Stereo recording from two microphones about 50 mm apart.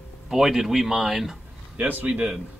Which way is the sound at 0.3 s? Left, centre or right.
Centre.